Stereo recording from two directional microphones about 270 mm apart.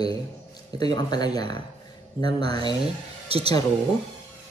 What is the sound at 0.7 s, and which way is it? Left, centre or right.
Speech, centre.